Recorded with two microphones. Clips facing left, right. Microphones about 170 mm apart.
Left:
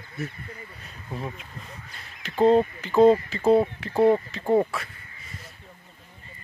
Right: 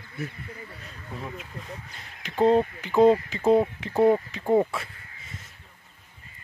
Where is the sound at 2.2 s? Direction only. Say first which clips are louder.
Left 2 dB; 15° right (ahead or behind).